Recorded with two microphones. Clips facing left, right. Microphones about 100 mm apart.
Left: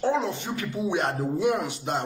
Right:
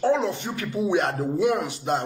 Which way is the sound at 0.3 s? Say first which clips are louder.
Right 2 dB; 45° right (ahead or behind).